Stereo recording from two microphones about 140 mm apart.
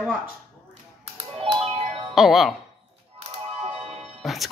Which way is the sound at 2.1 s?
Centre (ahead or behind).